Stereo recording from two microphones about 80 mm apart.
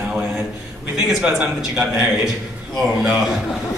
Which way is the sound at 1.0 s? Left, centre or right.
Centre.